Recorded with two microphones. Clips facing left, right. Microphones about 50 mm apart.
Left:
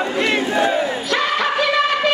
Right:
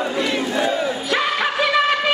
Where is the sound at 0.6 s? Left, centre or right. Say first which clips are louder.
Left 2 dB; left.